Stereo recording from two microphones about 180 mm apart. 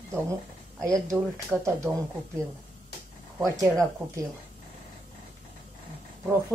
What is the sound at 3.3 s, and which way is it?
Speech, 15° right (ahead or behind).